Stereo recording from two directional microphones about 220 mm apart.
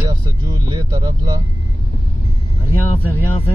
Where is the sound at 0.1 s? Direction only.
20° right (ahead or behind).